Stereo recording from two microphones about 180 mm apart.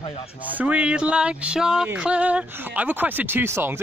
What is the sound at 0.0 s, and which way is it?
Speech, 35° left (ahead or behind).